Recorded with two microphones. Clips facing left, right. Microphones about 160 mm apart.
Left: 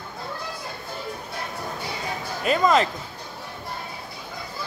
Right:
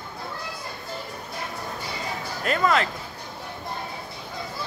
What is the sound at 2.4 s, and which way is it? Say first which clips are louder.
Speech: left 3 dB; 20° left (ahead or behind).